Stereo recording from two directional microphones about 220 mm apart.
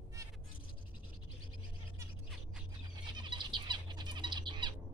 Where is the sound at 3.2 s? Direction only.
20° right (ahead or behind).